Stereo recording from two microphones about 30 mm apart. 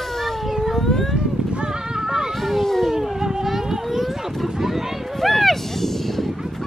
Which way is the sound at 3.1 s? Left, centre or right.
Right.